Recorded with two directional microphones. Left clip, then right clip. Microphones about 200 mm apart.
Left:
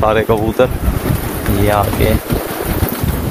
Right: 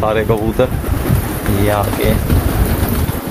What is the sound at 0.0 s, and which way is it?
Speech, 15° left (ahead or behind).